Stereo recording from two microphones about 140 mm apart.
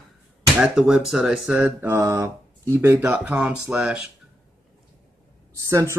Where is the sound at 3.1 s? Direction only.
5° right (ahead or behind).